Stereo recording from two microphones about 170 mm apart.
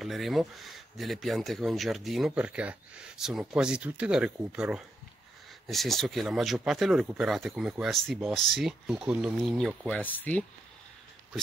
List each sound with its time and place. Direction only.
0.0 s speech: centre (ahead or behind)